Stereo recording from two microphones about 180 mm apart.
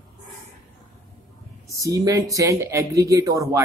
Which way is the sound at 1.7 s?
20° right (ahead or behind).